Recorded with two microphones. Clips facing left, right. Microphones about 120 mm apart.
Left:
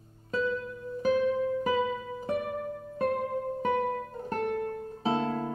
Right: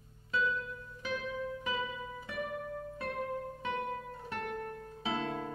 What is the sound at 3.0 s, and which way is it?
Music, 45° left (ahead or behind).